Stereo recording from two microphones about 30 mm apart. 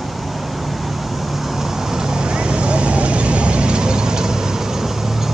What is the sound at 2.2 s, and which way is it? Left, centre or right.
Vehicle, right.